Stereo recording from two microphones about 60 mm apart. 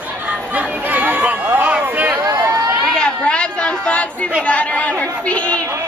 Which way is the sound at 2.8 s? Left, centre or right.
Centre.